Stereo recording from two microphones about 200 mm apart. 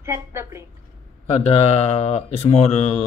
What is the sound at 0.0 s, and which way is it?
Speech, 15° right (ahead or behind).